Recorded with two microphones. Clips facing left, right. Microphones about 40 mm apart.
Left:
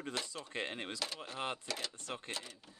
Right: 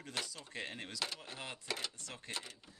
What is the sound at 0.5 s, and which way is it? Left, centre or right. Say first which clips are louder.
Speech: left 4 dB; left.